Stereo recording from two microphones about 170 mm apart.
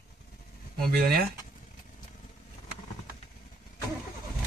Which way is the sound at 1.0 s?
60° right (ahead or behind).